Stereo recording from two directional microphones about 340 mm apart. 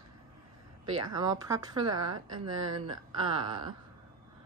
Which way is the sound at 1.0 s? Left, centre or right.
Centre.